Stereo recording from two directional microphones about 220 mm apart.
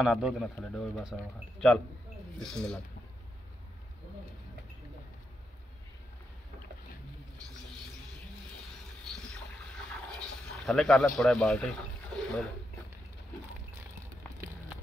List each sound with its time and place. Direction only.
0.0 s speech: centre (ahead or behind)
2.4 s speech: 5° left (ahead or behind)
10.1 s a sound: centre (ahead or behind)